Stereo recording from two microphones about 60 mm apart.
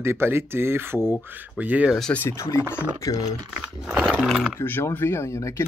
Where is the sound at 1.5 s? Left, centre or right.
Right.